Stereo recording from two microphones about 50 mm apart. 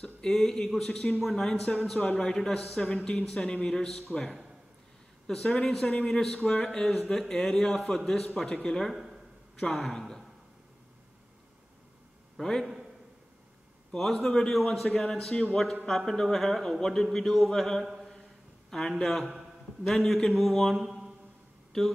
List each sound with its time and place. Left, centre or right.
0.3 s a man's voice: centre
3.4 s speech: left
3.7 s a man's voice: centre
8.3 s speech: centre
8.9 s a sound: centre
9.6 s speech: centre
12.4 s speech: centre
13.9 s a man's voice: centre
20.7 s a sound: centre